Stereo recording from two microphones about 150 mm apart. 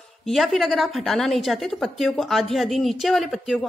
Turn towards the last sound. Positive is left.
turn(degrees=0)  # may be behind; listen again after turning